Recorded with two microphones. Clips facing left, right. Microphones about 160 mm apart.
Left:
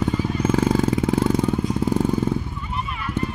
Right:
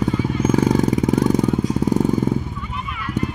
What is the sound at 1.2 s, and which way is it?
Vehicle, 15° right (ahead or behind).